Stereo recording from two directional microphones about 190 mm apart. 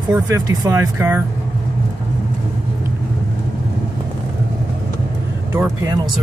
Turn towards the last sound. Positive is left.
turn(degrees=-15)  # may be behind; listen again after turning